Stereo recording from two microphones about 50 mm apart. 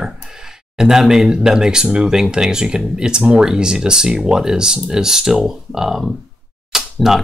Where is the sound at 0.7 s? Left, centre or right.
Centre.